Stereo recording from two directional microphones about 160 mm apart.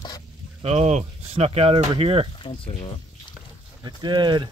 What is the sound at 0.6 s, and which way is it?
Speech, 45° right (ahead or behind).